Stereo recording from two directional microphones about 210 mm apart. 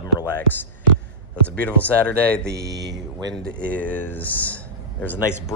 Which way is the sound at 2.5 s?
50° right (ahead or behind).